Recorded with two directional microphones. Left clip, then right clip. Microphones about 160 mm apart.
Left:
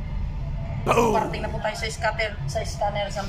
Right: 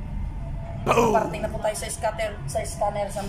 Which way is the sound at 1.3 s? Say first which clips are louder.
Right 1 dB; 20° right (ahead or behind).